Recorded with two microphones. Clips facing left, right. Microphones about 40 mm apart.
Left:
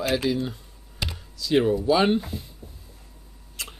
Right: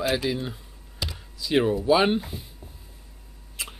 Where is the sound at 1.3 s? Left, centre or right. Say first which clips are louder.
Left 1 dB; centre.